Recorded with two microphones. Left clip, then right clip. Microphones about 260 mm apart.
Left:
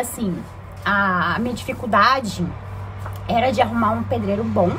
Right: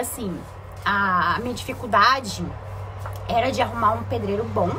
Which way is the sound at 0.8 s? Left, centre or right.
Centre.